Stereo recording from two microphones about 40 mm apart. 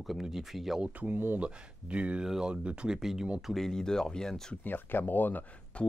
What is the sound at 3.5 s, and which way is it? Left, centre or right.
Speech, centre.